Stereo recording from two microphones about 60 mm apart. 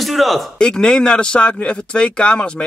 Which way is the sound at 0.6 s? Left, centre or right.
Centre.